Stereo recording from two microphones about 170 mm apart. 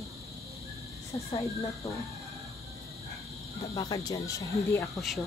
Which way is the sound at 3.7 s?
25° left (ahead or behind).